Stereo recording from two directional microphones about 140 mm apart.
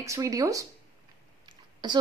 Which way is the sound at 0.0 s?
25° right (ahead or behind).